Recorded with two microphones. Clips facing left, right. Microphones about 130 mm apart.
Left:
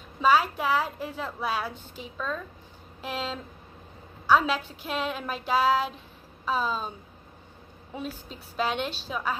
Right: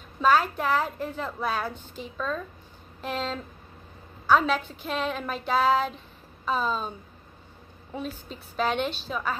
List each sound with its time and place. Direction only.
0.2 s a woman's voice: 10° left (ahead or behind)
4.8 s a woman's voice: 10° left (ahead or behind)
7.9 s a woman's voice: 5° left (ahead or behind)